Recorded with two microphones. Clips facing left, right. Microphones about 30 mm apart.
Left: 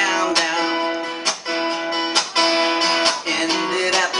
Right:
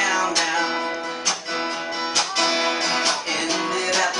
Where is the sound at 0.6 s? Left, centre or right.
Left.